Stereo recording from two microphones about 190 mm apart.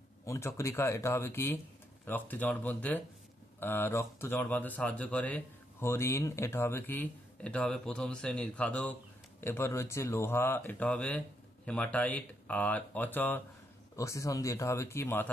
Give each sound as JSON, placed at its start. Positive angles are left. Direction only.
{"t": 0.2, "sound": "speech", "side_deg": 15}